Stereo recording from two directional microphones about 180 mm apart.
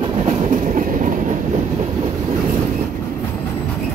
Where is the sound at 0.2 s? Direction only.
40° right (ahead or behind).